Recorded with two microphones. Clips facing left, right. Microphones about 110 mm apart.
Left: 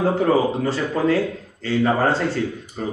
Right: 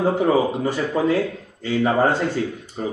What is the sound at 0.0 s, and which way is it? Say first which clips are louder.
Speech: even; 15° right (ahead or behind).